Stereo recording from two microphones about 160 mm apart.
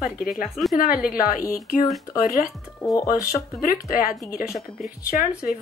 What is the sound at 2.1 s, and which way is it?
Speech, 55° left (ahead or behind).